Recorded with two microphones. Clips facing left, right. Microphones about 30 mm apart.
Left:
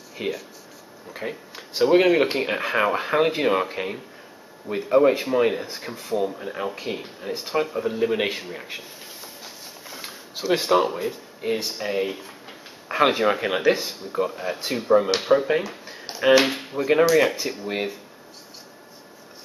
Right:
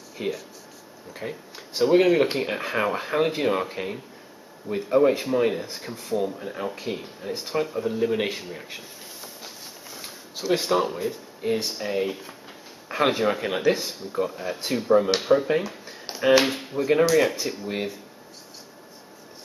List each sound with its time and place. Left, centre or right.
0.1 s speech: centre